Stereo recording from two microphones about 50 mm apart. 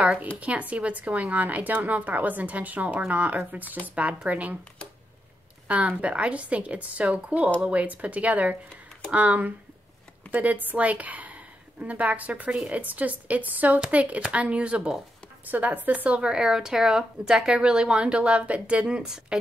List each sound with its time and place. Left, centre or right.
0.0 s speech: right
5.7 s a woman's voice: right
15.4 s speech: right
19.0 s speech: centre